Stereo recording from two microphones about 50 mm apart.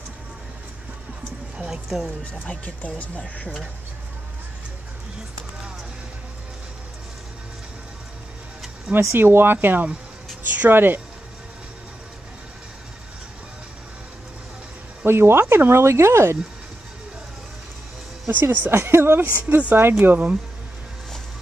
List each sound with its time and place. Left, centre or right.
1.7 s speech: centre
2.4 s speech: left
8.9 s speech: centre
9.2 s speech: right
15.0 s speech: right
18.3 s speech: right
18.7 s speech: right
19.2 s speech: right